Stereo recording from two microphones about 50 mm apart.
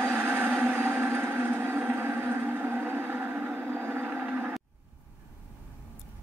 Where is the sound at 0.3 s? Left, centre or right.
Right.